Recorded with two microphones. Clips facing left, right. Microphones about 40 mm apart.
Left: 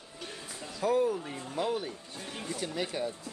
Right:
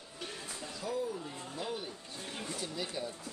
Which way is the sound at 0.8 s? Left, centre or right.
Left.